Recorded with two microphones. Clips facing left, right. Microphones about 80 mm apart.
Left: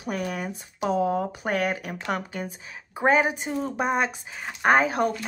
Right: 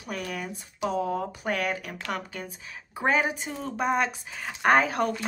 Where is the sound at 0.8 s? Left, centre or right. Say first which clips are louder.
Left 4 dB; left; by 5.1 s centre.